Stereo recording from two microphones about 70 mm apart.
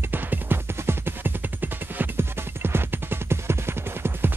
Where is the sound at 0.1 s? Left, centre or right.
Right.